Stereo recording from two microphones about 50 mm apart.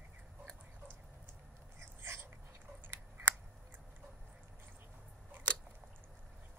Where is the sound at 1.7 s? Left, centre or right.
Right.